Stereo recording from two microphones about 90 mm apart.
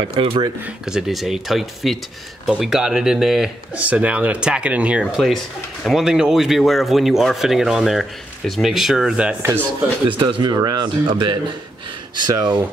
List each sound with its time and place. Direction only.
0.1 s speech: 80° right
0.8 s speech: 5° right (ahead or behind)
3.7 s speech: 15° right (ahead or behind)
5.1 s speech: centre (ahead or behind)
10.0 s speech: 65° right (ahead or behind)